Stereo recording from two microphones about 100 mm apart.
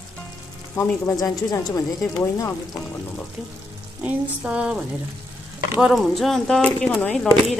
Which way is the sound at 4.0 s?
10° right (ahead or behind).